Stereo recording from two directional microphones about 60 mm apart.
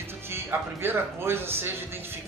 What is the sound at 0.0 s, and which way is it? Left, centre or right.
Speech, right.